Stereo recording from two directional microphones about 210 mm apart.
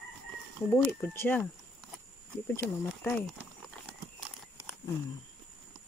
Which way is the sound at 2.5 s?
10° left (ahead or behind).